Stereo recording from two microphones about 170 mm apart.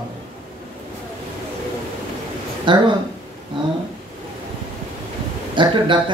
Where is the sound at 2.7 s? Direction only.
30° right (ahead or behind).